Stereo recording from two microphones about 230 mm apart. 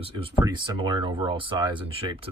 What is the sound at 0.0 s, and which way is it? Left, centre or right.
Speech, right.